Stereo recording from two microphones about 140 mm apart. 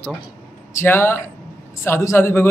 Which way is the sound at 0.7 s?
15° left (ahead or behind).